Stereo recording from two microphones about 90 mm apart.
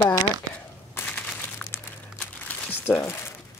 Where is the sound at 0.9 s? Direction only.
25° left (ahead or behind).